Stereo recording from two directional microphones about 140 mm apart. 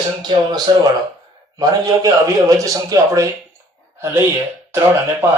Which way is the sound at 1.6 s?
25° right (ahead or behind).